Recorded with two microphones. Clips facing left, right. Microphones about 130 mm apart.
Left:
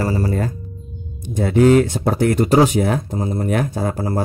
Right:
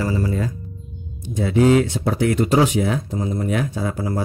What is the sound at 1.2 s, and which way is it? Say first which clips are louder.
Speech: left 3 dB; 50° left (ahead or behind).